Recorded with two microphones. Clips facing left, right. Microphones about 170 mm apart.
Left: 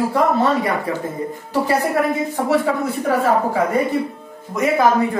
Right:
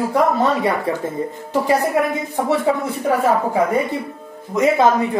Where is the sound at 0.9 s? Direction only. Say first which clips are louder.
Right 2 dB; 25° right (ahead or behind).